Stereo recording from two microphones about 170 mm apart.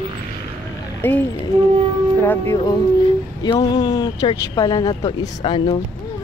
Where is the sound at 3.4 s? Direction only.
25° left (ahead or behind).